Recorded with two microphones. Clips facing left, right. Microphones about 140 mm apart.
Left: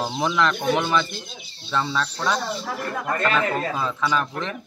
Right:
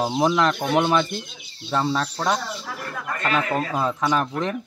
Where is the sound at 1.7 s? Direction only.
40° right (ahead or behind).